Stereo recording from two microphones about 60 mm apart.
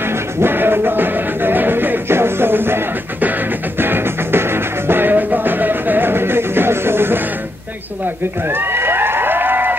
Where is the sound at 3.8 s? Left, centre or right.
Right.